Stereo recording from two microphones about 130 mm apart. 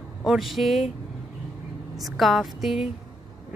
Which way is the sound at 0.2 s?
Centre (ahead or behind).